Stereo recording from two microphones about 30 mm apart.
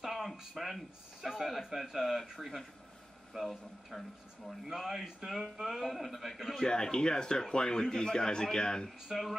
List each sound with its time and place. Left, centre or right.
0.0 s a sound: centre
0.4 s speech: centre
4.5 s speech: centre
6.6 s speech: left